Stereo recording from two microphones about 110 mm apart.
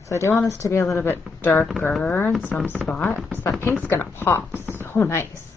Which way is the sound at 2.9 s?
10° left (ahead or behind).